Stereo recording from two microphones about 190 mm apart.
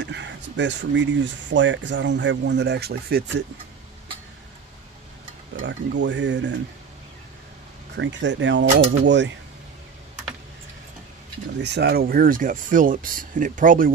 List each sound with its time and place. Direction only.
0.0 s speech: 70° right (ahead or behind)
5.7 s speech: 70° right (ahead or behind)
8.0 s speech: 70° right (ahead or behind)
11.6 s speech: 60° right (ahead or behind)